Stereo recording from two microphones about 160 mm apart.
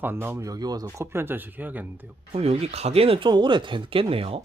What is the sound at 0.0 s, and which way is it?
Speech, 15° right (ahead or behind).